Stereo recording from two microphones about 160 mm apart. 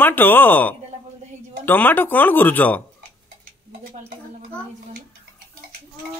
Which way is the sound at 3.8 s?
60° right (ahead or behind).